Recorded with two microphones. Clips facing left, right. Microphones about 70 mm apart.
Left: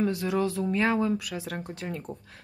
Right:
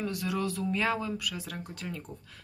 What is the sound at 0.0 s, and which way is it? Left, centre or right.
Speech, left.